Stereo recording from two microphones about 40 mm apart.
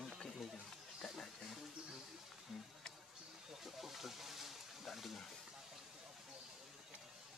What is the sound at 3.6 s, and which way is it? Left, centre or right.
Speech, centre.